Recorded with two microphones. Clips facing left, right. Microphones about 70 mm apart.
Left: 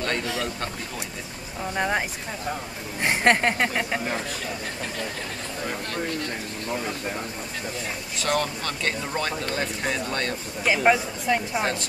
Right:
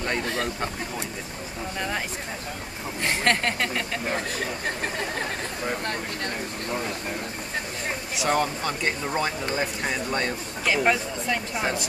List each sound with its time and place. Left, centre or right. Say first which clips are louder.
0.2 s speech: right 1 dB; right
1.8 s speech: left 5 dB; left
8.2 s speech: right 1 dB; centre
10.6 s speech: left 2 dB; centre